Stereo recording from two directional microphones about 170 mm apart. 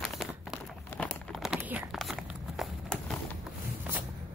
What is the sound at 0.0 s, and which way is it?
Crumpling, centre (ahead or behind).